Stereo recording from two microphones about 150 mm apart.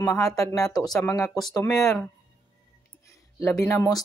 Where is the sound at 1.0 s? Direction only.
20° left (ahead or behind).